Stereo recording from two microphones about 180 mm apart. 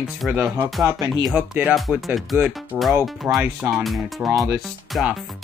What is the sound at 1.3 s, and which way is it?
Speech, 5° right (ahead or behind).